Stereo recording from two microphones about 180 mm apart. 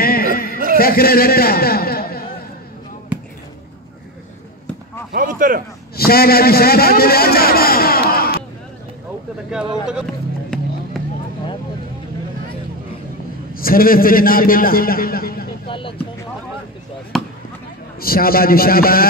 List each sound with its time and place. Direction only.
0.0 s a sound: 55° left (ahead or behind)
0.7 s a man's voice: 55° left (ahead or behind)
5.1 s a sound: 50° right (ahead or behind)
5.9 s a man's voice: 60° left (ahead or behind)
10.5 s music: 5° left (ahead or behind)
10.9 s vehicle: centre (ahead or behind)
13.6 s a man's voice: 55° left (ahead or behind)
17.1 s basketball bounce: centre (ahead or behind)
18.0 s a man's voice: 55° left (ahead or behind)